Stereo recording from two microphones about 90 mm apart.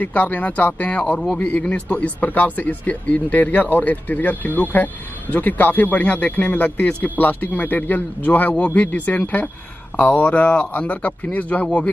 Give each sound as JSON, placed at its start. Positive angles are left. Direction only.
{"t": 0.0, "sound": "a man's voice", "side_deg": 15}